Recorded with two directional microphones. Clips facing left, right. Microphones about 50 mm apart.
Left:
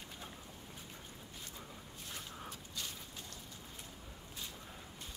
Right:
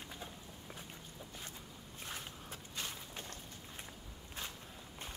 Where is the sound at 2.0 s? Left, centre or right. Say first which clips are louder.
Right 1 dB; right.